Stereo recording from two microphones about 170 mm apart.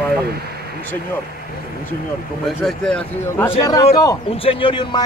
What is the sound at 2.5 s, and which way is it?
Speech, 5° left (ahead or behind).